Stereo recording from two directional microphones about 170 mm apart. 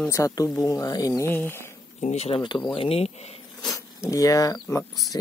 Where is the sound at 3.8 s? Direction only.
20° left (ahead or behind).